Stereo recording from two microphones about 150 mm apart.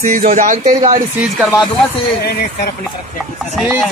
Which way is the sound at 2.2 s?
90° left.